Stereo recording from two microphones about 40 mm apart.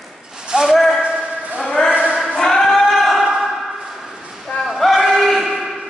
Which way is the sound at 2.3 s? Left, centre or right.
Centre.